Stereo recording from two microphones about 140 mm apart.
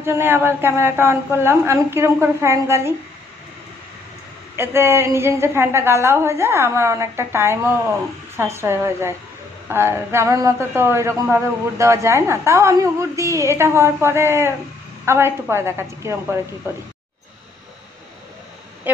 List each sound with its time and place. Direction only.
0.0 s a woman's voice: 15° right (ahead or behind)
4.6 s a man's voice: 15° right (ahead or behind)